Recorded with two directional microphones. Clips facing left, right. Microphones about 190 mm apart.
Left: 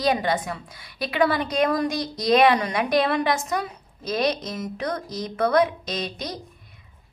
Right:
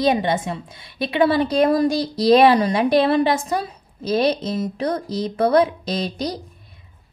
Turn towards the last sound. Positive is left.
turn(degrees=-35)  # may be behind; listen again after turning